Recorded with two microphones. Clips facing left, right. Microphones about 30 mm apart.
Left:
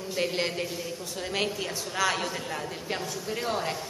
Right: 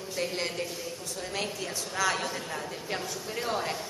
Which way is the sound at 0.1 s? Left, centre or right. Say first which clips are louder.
Left 3 dB; centre.